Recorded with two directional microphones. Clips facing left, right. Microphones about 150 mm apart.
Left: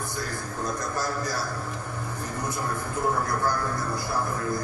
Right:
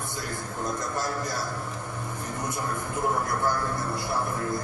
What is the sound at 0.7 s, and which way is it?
Speech, 25° right (ahead or behind).